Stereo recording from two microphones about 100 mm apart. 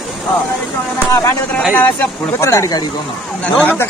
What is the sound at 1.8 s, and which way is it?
Speech, 20° left (ahead or behind).